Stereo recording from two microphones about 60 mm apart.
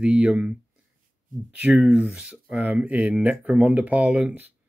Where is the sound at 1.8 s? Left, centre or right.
Right.